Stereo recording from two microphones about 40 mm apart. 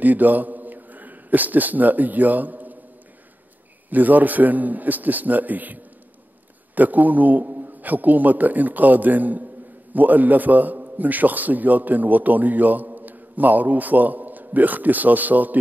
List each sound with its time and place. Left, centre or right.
0.0 s a man's voice: right
3.9 s a man's voice: right